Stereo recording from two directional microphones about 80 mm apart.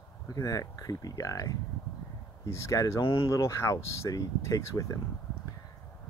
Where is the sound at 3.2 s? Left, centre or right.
Left.